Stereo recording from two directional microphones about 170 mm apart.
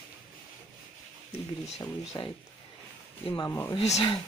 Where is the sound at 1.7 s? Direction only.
25° left (ahead or behind).